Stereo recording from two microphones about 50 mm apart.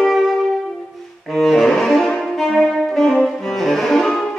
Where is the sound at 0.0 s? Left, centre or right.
Centre.